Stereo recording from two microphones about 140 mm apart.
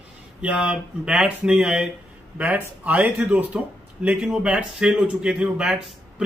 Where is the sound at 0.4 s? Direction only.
10° right (ahead or behind).